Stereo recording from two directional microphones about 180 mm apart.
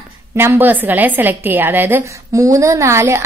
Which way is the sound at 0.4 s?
10° right (ahead or behind).